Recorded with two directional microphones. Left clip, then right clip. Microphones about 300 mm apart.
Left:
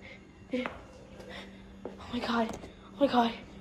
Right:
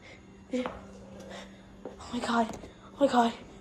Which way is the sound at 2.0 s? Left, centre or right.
Centre.